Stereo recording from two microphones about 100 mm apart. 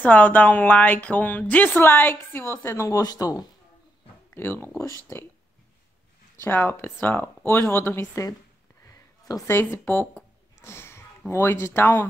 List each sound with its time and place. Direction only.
0.0 s a woman's voice: 15° left (ahead or behind)
3.0 s speech: 40° left (ahead or behind)
4.4 s speech: 20° left (ahead or behind)
6.4 s speech: 20° left (ahead or behind)
8.8 s a sound: 30° left (ahead or behind)
9.6 s speech: 20° left (ahead or behind)